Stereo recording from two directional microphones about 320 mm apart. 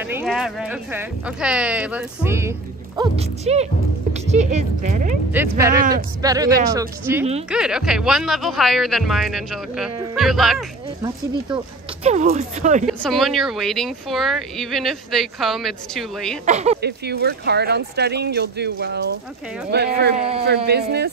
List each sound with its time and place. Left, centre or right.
0.0 s speech: centre
3.0 s speech: centre
5.3 s speech: centre
5.7 s speech: right
6.2 s speech: centre
11.5 s speech: right
12.8 s speech: centre
16.4 s speech: right
16.8 s speech: right